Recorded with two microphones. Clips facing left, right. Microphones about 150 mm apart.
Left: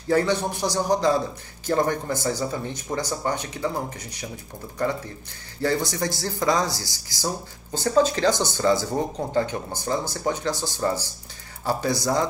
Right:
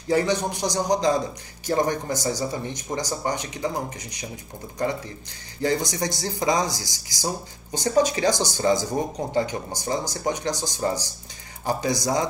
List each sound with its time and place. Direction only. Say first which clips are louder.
0.1 s speech: even; 15° right (ahead or behind)
5.6 s speech: even; 15° right (ahead or behind)